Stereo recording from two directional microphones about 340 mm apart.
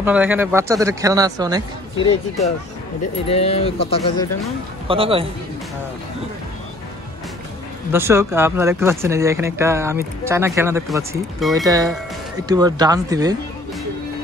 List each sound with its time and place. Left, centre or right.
0.0 s speech: centre
2.0 s speech: centre
4.8 s speech: centre
7.9 s speech: centre
11.5 s speech: centre